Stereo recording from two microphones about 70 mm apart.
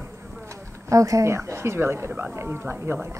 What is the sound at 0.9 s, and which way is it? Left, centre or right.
Speech, right.